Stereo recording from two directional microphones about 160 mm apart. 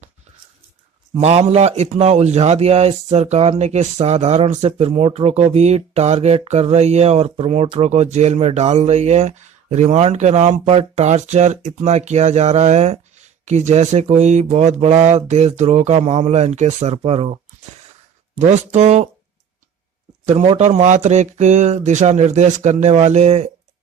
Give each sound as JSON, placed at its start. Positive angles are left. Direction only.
{"t": 1.1, "sound": "a man's voice", "side_deg": -40}
{"t": 7.8, "sound": "speech", "side_deg": -45}
{"t": 18.4, "sound": "speech", "side_deg": -45}
{"t": 20.2, "sound": "speech", "side_deg": -40}